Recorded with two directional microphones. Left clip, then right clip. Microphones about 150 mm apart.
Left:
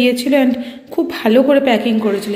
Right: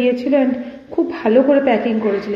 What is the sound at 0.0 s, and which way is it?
A man's voice, 25° left (ahead or behind).